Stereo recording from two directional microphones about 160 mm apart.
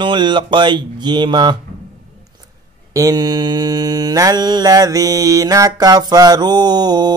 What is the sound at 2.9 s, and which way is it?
Speech, 20° right (ahead or behind).